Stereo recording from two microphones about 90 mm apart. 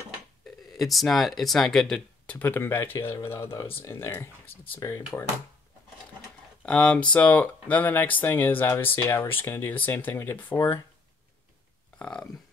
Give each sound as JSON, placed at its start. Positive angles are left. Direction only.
{"t": 0.7, "sound": "speech", "side_deg": 0}
{"t": 2.2, "sound": "speech", "side_deg": 20}
{"t": 6.6, "sound": "speech", "side_deg": 15}
{"t": 12.0, "sound": "a sound", "side_deg": 5}